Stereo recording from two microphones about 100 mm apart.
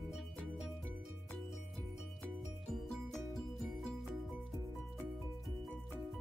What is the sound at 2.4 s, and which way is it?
Music, centre (ahead or behind).